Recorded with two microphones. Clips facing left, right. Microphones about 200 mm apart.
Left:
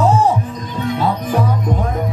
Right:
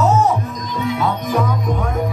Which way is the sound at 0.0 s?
30° left (ahead or behind).